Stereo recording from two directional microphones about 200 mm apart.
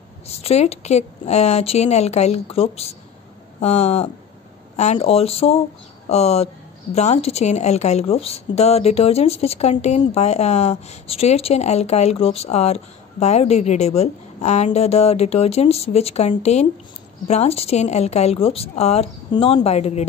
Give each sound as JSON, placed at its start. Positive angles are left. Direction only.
{"t": 0.3, "sound": "speech", "side_deg": 30}